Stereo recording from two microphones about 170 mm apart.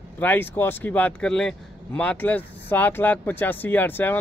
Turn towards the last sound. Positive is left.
turn(degrees=10)  # may be behind; listen again after turning